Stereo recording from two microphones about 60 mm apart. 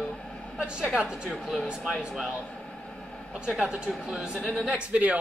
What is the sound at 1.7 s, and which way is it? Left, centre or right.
Speech, centre.